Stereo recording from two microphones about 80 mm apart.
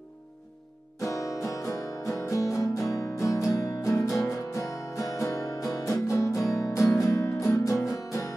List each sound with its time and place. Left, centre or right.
0.9 s music: left